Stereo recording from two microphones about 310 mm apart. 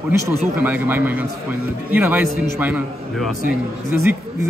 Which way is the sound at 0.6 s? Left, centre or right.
Centre.